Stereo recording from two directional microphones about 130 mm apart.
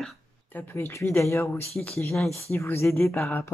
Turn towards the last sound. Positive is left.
turn(degrees=20)  # may be behind; listen again after turning